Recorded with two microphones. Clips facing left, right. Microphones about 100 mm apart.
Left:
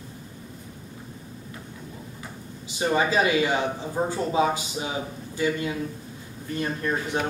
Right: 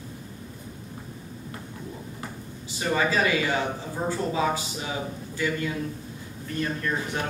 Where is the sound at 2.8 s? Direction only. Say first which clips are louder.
Left 2 dB; 25° left (ahead or behind).